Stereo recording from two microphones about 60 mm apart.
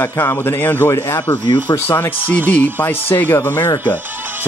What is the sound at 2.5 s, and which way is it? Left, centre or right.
A man's voice, left.